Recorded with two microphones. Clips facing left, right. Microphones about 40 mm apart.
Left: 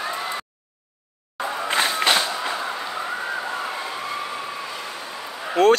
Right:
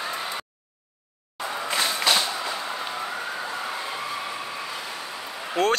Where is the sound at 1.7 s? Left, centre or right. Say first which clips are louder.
Left 3 dB; left.